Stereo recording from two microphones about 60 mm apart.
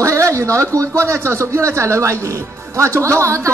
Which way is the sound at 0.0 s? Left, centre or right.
Right.